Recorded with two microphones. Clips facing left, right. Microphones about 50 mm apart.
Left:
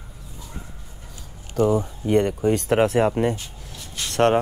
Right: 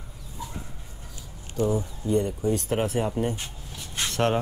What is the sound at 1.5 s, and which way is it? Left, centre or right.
Speech, left.